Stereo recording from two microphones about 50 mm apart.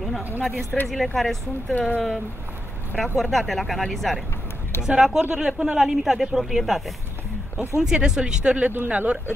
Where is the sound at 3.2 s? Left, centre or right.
Centre.